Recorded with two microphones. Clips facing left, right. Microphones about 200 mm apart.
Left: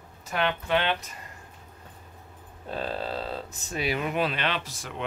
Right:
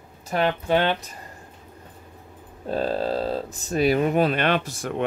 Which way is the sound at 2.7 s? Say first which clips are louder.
Right 8 dB; 40° right (ahead or behind).